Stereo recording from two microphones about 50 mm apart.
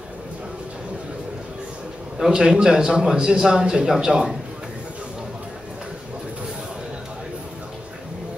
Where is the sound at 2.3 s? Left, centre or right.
Centre.